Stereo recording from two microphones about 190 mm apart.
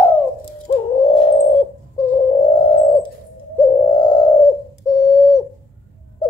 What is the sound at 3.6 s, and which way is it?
Bird, 20° left (ahead or behind).